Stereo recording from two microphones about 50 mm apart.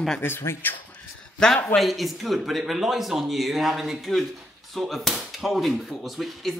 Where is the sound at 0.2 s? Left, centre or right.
Left.